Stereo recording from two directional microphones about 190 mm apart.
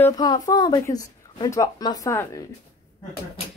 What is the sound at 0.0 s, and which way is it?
Speech, 20° left (ahead or behind).